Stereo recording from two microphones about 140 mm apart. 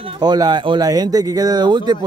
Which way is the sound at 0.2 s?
30° right (ahead or behind).